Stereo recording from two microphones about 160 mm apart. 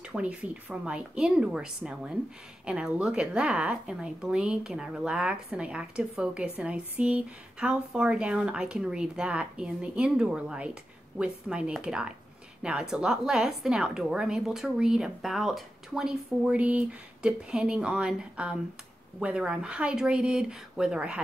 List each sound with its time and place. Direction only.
0.0 s a woman's voice: 5° right (ahead or behind)